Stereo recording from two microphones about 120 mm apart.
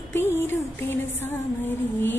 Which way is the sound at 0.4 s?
20° left (ahead or behind).